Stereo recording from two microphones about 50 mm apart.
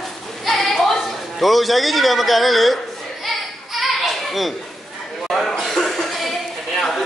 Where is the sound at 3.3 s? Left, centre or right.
Centre.